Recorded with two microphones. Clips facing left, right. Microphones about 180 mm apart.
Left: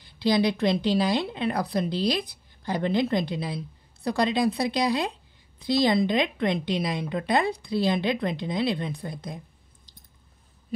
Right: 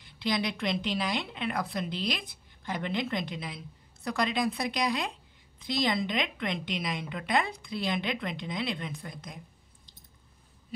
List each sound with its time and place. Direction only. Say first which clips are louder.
0.0 s a woman's voice: left 8 dB; 35° left (ahead or behind)